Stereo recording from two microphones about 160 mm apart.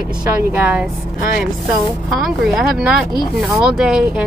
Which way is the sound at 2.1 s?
Centre (ahead or behind).